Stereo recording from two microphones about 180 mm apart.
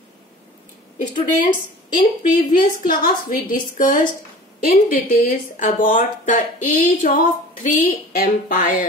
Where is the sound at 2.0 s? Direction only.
50° left (ahead or behind).